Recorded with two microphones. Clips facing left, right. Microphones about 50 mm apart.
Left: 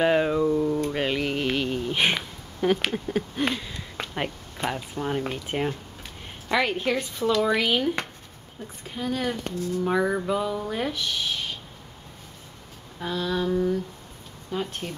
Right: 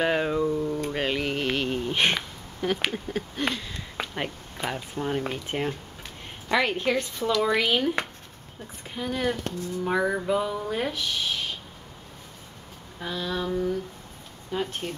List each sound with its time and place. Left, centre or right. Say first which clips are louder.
0.0 s a sound: left 3 dB; centre
0.9 s mantra: left 1 dB; centre
2.0 s speech: even; centre
13.0 s speech: left 3 dB; centre
14.5 s speech: even; centre